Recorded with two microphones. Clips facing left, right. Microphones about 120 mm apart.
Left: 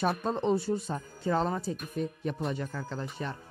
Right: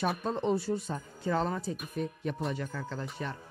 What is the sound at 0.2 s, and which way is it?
Speech, 25° left (ahead or behind).